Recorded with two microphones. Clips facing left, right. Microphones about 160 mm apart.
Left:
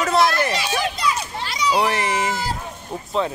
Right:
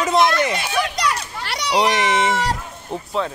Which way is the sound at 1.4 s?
70° right (ahead or behind).